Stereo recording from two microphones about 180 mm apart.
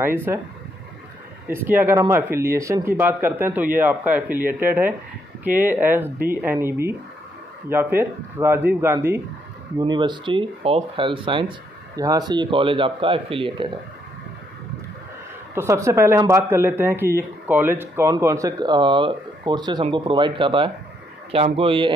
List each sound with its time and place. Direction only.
0.0 s speech: 10° right (ahead or behind)
1.5 s speech: 10° right (ahead or behind)
9.8 s speech: 25° right (ahead or behind)
15.5 s speech: 15° right (ahead or behind)